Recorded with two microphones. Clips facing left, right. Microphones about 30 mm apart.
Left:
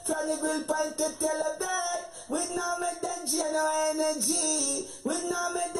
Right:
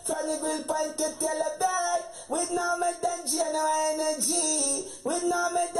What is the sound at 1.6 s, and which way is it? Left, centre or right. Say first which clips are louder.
Speech: right 5 dB; centre.